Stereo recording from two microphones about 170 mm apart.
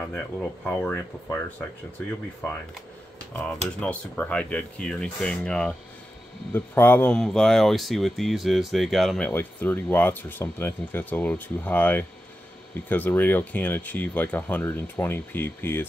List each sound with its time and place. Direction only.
0.0 s speech: 5° left (ahead or behind)
3.8 s speech: 10° left (ahead or behind)
9.3 s speech: 10° left (ahead or behind)